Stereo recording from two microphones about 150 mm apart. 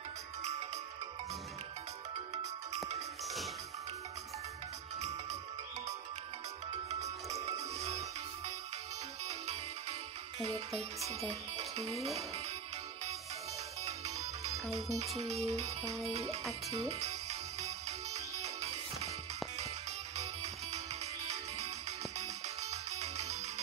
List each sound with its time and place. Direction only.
0.4 s music: 45° right (ahead or behind)
2.1 s music: 45° right (ahead or behind)
6.9 s music: 45° right (ahead or behind)
9.2 s music: 45° right (ahead or behind)
13.8 s music: 45° right (ahead or behind)
20.2 s music: 45° right (ahead or behind)